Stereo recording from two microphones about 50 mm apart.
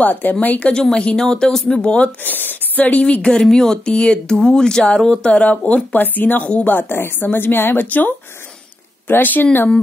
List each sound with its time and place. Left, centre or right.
0.0 s a woman's voice: left
0.7 s speech: centre
2.2 s a woman's voice: left
4.4 s a woman's voice: centre; by 9.7 s left